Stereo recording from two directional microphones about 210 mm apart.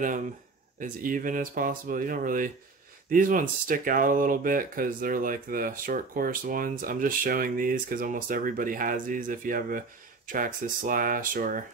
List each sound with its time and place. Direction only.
0.7 s speech: 40° right (ahead or behind)